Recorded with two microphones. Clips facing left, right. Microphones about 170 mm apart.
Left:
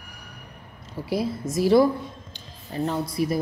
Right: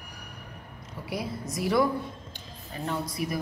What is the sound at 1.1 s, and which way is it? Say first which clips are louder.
A woman's voice: left 7 dB; 30° left (ahead or behind).